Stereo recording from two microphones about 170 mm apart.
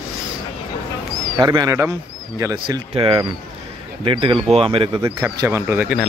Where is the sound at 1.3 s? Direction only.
25° right (ahead or behind).